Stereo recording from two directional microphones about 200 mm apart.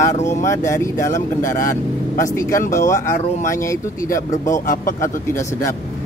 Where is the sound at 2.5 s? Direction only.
45° left (ahead or behind).